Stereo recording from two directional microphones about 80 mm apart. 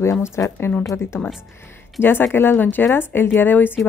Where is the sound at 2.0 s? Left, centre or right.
Left.